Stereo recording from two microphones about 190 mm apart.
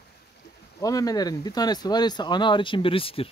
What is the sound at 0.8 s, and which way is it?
Speech, 20° left (ahead or behind).